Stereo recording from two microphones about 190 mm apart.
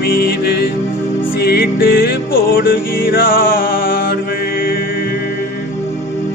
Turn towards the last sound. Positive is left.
turn(degrees=50)  # may be behind; listen again after turning